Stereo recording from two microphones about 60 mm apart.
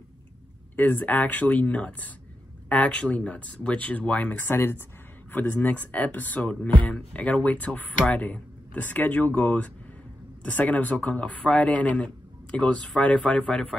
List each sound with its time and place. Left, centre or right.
0.7 s speech: left